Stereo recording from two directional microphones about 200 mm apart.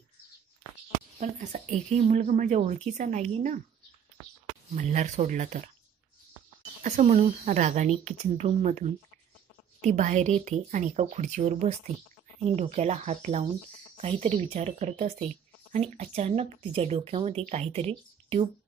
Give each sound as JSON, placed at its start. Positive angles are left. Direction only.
{"t": 0.9, "sound": "speech", "side_deg": -35}
{"t": 4.7, "sound": "speech", "side_deg": -35}
{"t": 6.8, "sound": "speech", "side_deg": -40}